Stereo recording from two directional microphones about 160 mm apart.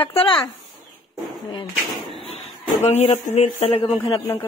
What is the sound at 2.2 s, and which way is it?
Speech, 40° left (ahead or behind).